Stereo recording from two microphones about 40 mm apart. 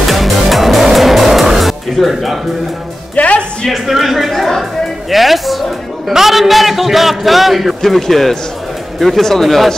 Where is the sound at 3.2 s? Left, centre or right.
Left.